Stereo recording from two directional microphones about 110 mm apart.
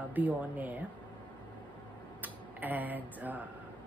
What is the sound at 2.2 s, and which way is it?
Speech, 15° right (ahead or behind).